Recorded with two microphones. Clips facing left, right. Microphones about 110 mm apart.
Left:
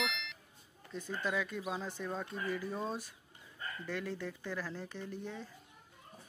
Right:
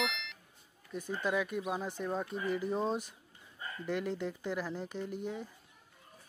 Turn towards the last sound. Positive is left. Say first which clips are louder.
# right 5 dB
turn(degrees=-15)  # may be behind; listen again after turning